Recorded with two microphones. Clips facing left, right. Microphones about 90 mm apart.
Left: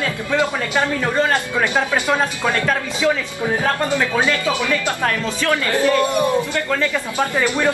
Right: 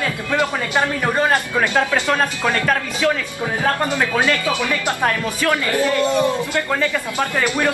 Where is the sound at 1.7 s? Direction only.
15° left (ahead or behind).